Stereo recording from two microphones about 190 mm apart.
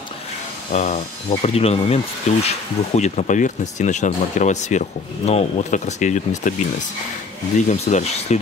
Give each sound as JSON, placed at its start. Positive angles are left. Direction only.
{"t": 0.7, "sound": "speech", "side_deg": 40}
{"t": 7.6, "sound": "speech", "side_deg": 35}